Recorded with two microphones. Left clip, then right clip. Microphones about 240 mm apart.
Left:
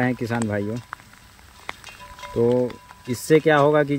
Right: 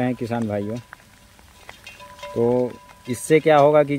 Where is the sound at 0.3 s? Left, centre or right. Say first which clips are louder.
Even; left.